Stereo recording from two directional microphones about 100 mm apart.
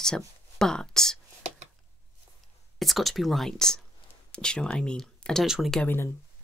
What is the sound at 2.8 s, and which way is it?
Speech, centre (ahead or behind).